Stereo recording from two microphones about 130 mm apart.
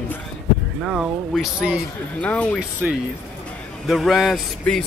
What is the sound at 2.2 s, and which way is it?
Speech, 10° left (ahead or behind).